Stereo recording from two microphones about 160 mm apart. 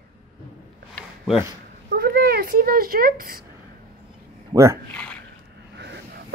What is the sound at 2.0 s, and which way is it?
A child's voice, 75° right (ahead or behind).